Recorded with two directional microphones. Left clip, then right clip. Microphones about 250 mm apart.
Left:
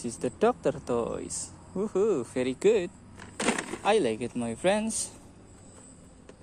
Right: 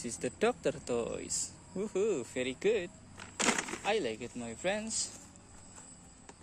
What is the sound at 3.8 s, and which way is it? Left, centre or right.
Speech, left.